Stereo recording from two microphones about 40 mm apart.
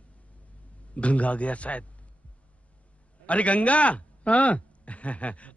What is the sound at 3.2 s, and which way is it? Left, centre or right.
A man's voice, left.